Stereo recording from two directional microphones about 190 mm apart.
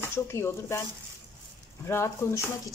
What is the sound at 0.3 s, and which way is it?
Speech, 15° left (ahead or behind).